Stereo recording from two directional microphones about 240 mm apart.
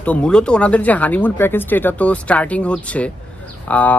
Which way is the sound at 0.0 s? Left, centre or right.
Centre.